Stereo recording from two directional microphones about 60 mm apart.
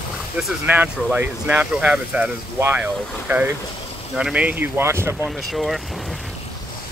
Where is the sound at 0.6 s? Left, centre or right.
Right.